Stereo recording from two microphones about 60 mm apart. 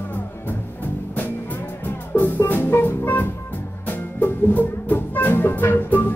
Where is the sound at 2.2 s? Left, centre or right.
Left.